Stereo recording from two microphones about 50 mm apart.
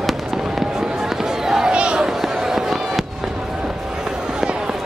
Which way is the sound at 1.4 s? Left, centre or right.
Centre.